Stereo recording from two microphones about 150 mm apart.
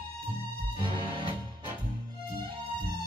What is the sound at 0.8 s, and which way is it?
Music, 35° right (ahead or behind).